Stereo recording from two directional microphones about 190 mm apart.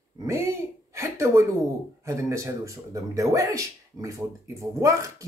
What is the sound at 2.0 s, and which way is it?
Speech, 15° right (ahead or behind).